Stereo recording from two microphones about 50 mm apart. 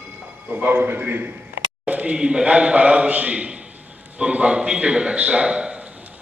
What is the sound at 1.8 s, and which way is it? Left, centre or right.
A man's voice, right.